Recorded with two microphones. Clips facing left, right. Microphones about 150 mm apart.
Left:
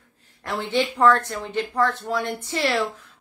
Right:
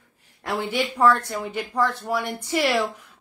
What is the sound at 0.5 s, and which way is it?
Speech, 10° right (ahead or behind).